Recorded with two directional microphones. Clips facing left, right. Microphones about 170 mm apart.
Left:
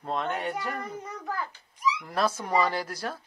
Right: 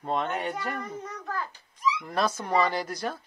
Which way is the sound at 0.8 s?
15° left (ahead or behind).